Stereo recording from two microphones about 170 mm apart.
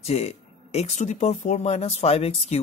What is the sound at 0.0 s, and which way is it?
Speech, 40° left (ahead or behind).